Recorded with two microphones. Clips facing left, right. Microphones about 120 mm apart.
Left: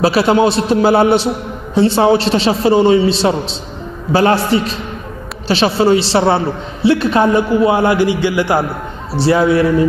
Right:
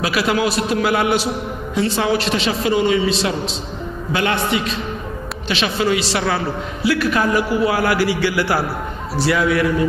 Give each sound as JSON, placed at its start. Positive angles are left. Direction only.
{"t": 0.0, "sound": "a man's voice", "side_deg": 30}
{"t": 9.2, "sound": "a man's voice", "side_deg": 30}